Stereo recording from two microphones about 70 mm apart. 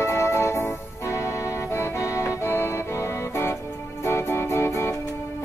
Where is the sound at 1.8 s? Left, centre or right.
Left.